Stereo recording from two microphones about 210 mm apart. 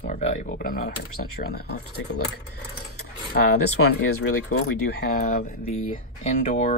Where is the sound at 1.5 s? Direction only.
50° left (ahead or behind).